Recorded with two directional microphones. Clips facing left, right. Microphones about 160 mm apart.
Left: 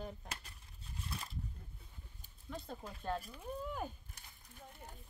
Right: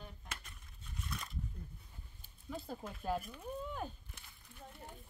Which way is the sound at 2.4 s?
5° right (ahead or behind).